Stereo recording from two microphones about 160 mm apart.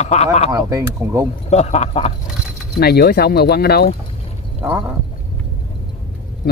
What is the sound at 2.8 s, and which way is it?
Speech, 85° left.